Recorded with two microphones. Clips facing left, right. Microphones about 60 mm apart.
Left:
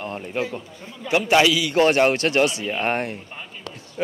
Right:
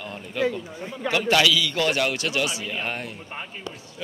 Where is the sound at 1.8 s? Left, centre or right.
Left.